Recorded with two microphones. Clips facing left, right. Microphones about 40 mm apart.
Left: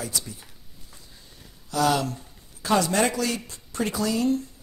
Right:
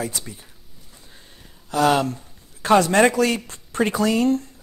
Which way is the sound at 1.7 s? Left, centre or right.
Right.